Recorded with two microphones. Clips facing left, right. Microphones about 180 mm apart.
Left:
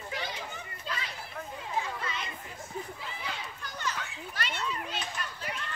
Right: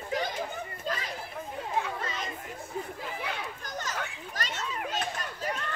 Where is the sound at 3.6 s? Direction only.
45° right (ahead or behind).